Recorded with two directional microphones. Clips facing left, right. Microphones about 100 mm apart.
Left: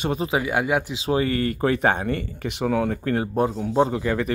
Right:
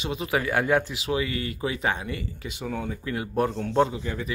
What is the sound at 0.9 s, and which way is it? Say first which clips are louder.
Speech: left 5 dB; 35° left (ahead or behind).